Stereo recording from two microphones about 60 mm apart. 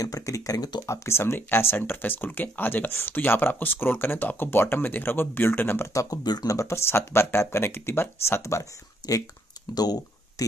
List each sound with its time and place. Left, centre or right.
0.0 s speech: left
5.9 s speech: left
6.7 s speech: left
9.0 s speech: left